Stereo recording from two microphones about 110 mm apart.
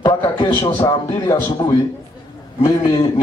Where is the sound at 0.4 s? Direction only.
50° left (ahead or behind).